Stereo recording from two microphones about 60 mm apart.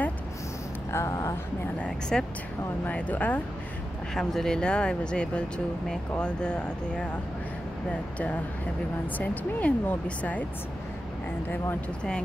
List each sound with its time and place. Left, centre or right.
0.9 s speech: left
1.9 s speech: centre
2.8 s speech: left
4.1 s speech: centre
9.0 s speech: left